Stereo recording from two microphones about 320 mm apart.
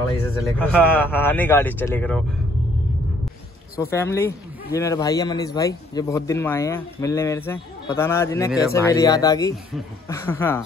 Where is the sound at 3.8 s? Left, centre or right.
Centre.